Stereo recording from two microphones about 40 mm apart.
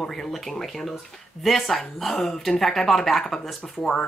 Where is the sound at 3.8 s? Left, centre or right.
Centre.